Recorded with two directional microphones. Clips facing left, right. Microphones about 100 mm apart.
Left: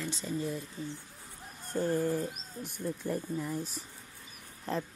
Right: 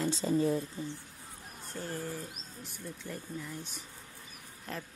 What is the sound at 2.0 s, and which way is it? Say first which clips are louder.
Speech: left 9 dB; 50° left (ahead or behind).